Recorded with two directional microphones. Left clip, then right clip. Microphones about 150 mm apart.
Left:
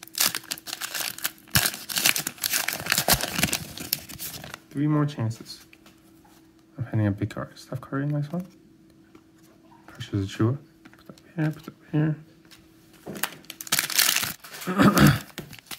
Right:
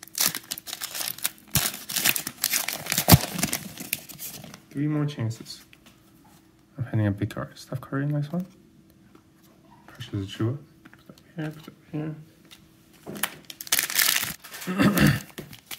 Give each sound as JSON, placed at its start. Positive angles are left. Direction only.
{"t": 0.2, "sound": "crumpling", "side_deg": 20}
{"t": 3.3, "sound": "a sound", "side_deg": 25}
{"t": 4.6, "sound": "speech", "side_deg": 25}
{"t": 6.8, "sound": "speech", "side_deg": 0}
{"t": 9.9, "sound": "speech", "side_deg": 25}
{"t": 13.1, "sound": "a sound", "side_deg": 35}
{"t": 13.7, "sound": "crumpling", "side_deg": 10}
{"t": 14.6, "sound": "speech", "side_deg": 20}
{"t": 15.0, "sound": "a sound", "side_deg": 25}